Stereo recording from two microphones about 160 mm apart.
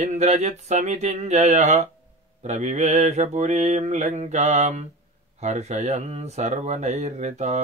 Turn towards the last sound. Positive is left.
turn(degrees=-45)  # may be behind; listen again after turning